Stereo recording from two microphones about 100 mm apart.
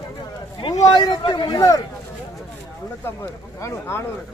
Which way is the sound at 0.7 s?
40° left (ahead or behind).